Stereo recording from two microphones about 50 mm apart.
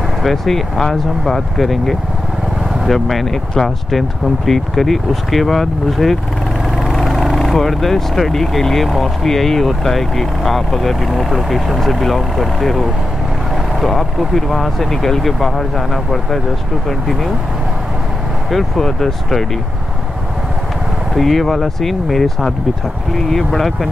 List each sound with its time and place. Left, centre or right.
0.2 s speech: centre
18.5 s speech: centre
21.1 s speech: centre